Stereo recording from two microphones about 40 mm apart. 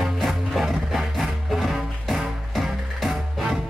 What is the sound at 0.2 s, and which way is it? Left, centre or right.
Music, centre.